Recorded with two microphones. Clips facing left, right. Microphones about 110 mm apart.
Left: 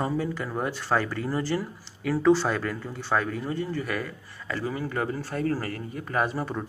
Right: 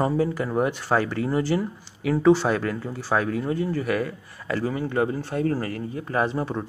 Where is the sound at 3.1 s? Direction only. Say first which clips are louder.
Right 3 dB; 15° right (ahead or behind).